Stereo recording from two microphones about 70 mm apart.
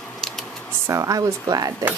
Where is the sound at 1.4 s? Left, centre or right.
Right.